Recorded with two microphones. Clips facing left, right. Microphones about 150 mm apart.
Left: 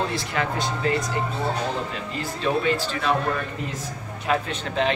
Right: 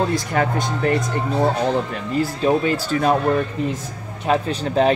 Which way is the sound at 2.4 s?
45° right (ahead or behind).